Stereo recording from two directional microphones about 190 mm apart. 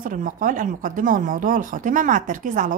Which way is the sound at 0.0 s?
45° right (ahead or behind).